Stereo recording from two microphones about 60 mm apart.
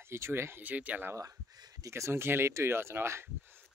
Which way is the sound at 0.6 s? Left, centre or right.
Right.